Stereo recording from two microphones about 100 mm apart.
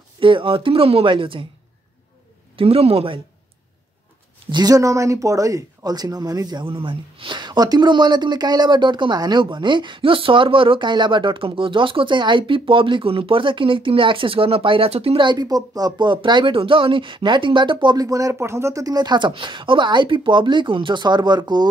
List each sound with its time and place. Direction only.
0.2 s speech: 60° right (ahead or behind)
2.5 s a man's voice: 75° right (ahead or behind)
4.5 s speech: 40° right (ahead or behind)
6.6 s speech: 60° right (ahead or behind); by 15.2 s 75° right (ahead or behind)
15.2 s speech: 40° right (ahead or behind)
17.9 s speech: 35° right (ahead or behind)